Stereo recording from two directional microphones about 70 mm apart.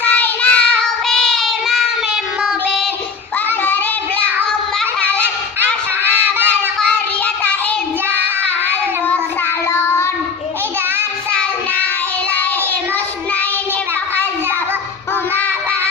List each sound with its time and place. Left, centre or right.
0.0 s child singing: left
1.0 s child singing: centre
4.2 s child singing: centre
9.7 s child singing: left